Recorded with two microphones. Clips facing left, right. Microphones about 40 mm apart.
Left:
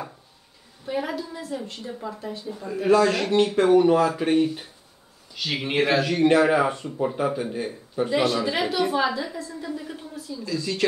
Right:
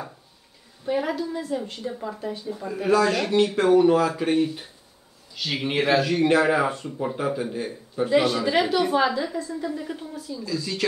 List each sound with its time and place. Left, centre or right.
0.8 s speech: centre
10.4 s a woman's voice: centre